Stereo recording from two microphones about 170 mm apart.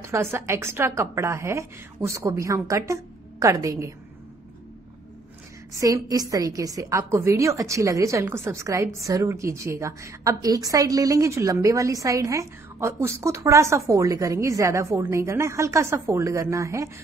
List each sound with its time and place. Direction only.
0.0 s a woman's voice: 15° right (ahead or behind)
5.7 s a woman's voice: 20° right (ahead or behind)